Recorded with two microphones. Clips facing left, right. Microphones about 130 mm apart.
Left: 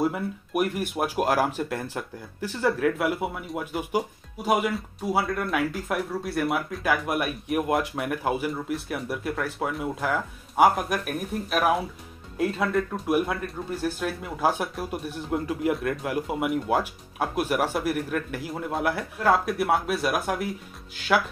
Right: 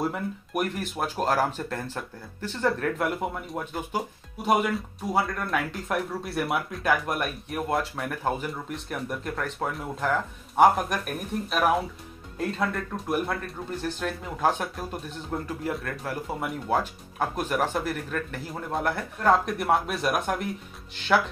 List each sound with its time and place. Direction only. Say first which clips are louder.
0.0 s speech: left 3 dB; 5° left (ahead or behind)